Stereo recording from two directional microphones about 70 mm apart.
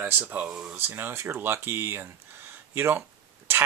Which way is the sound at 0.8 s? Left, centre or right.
Right.